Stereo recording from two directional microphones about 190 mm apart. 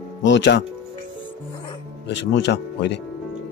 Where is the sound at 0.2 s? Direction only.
70° left (ahead or behind).